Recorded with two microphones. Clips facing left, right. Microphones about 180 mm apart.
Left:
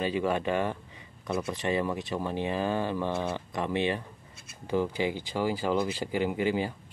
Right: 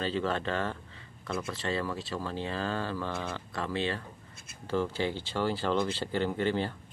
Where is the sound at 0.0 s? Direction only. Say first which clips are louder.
Left 3 dB; 15° left (ahead or behind).